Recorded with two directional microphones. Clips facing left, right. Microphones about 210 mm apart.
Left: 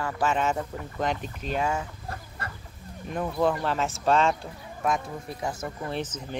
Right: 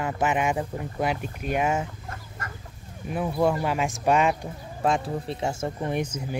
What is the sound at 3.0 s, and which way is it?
Speech, 5° right (ahead or behind).